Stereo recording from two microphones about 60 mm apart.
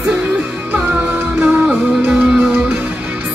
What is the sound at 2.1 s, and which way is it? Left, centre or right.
Music, centre.